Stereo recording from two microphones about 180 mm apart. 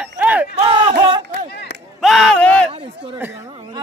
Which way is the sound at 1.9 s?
Centre (ahead or behind).